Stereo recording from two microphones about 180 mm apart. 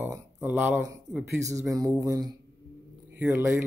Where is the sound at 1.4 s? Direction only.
20° right (ahead or behind).